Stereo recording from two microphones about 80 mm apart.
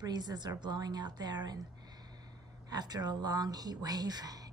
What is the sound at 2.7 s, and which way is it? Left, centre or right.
Speech, right.